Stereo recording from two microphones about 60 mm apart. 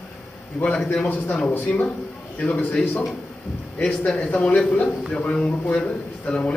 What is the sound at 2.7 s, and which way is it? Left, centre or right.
A man's voice, centre.